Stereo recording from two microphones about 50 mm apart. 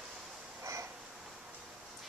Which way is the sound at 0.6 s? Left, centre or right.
Right.